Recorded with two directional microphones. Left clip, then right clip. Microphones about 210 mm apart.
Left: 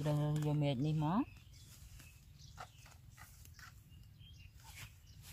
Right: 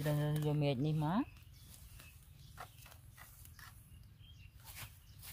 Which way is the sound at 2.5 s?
20° right (ahead or behind).